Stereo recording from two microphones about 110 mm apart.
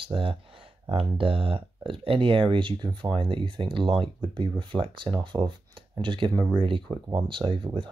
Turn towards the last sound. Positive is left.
turn(degrees=-50)  # may be behind; listen again after turning